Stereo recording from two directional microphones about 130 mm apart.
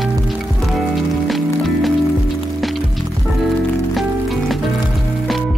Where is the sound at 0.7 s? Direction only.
Centre (ahead or behind).